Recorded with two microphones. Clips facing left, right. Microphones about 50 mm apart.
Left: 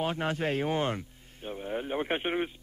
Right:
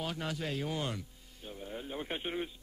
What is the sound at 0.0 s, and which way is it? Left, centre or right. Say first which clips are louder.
Speech: left 7 dB; left.